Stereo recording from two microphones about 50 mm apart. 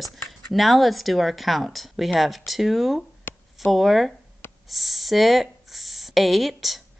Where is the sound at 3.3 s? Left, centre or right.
Left.